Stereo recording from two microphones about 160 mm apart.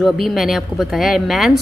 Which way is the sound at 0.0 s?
Centre (ahead or behind).